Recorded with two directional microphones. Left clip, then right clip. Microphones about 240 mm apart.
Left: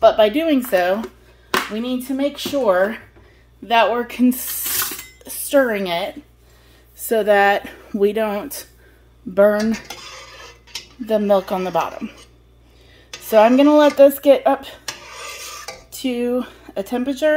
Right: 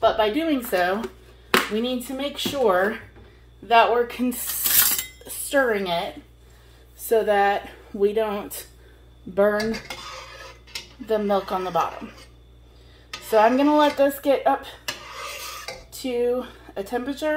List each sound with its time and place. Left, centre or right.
0.0 s speech: left
1.8 s speech: left
3.6 s speech: left
7.1 s speech: left
11.1 s speech: left
13.3 s speech: left
15.9 s speech: left